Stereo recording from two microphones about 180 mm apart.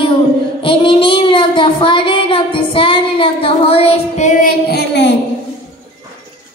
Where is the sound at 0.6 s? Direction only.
30° left (ahead or behind); by 5.1 s 70° left (ahead or behind).